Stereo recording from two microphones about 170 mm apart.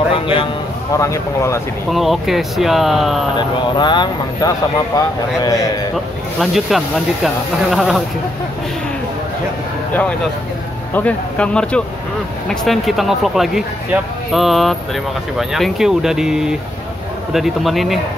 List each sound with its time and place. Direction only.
0.1 s a sound: 30° left (ahead or behind)
0.9 s speech: 20° left (ahead or behind)
1.9 s speech: centre (ahead or behind)
3.3 s speech: 25° left (ahead or behind)
6.4 s speech: centre (ahead or behind)
10.9 s speech: 10° left (ahead or behind)